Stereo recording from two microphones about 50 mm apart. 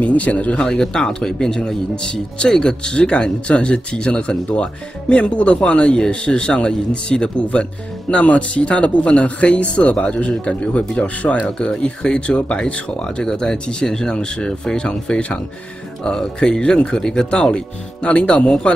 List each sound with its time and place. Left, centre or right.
0.0 s speech: left